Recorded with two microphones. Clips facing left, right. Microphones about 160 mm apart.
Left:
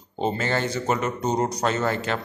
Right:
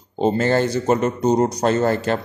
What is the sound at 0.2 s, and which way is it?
A man's voice, 40° right (ahead or behind).